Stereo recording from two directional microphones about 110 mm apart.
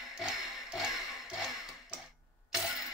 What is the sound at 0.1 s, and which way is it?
Music, 5° right (ahead or behind).